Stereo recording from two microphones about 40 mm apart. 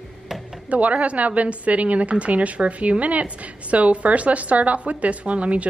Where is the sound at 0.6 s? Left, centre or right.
Right.